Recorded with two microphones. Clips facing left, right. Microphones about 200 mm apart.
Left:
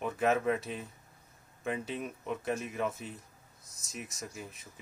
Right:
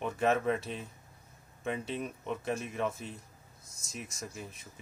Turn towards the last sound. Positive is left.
turn(degrees=0)  # may be behind; listen again after turning